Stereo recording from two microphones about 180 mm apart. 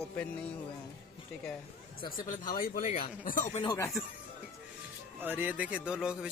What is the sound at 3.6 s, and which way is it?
Speech, 25° left (ahead or behind).